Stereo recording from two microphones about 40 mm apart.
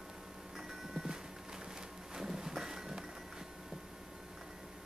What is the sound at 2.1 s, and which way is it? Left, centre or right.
Music, centre.